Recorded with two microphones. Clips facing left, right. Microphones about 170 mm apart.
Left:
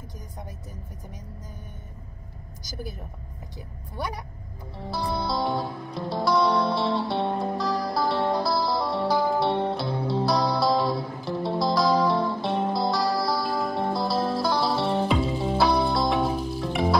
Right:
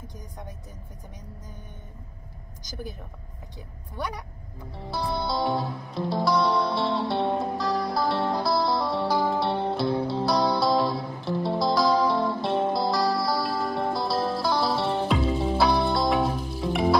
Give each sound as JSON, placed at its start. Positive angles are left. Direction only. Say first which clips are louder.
{"t": 4.7, "sound": "music", "louder": "even", "side_deg": 0}